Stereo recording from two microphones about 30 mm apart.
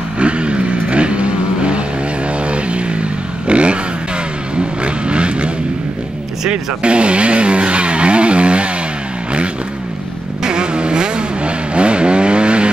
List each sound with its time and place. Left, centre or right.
0.2 s vehicle: right
6.5 s speech: right
10.4 s vehicle: right